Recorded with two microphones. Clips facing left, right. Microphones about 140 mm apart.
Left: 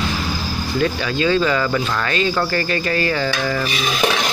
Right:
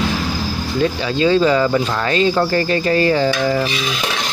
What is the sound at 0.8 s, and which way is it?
Speech, 30° right (ahead or behind).